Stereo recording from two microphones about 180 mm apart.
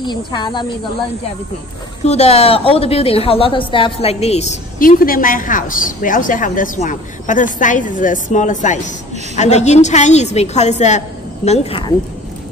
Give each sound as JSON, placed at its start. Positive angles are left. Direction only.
{"t": 0.0, "sound": "speech", "side_deg": 25}
{"t": 2.0, "sound": "a woman's voice", "side_deg": 35}
{"t": 4.7, "sound": "a woman's voice", "side_deg": 50}